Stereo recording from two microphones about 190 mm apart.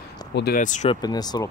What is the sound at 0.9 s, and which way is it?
Speech, 20° left (ahead or behind).